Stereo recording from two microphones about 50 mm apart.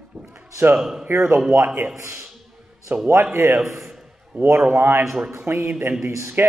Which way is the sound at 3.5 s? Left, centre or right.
Centre.